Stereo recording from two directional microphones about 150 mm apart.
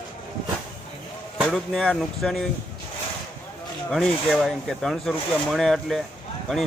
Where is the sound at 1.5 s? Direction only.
5° left (ahead or behind).